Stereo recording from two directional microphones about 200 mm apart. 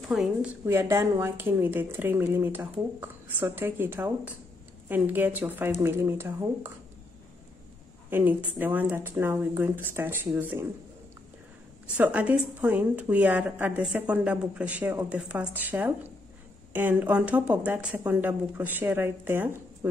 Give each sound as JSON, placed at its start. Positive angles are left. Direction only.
{"t": 0.1, "sound": "speech", "side_deg": 0}
{"t": 0.7, "sound": "speech", "side_deg": -15}
{"t": 8.1, "sound": "speech", "side_deg": -10}
{"t": 12.0, "sound": "speech", "side_deg": -5}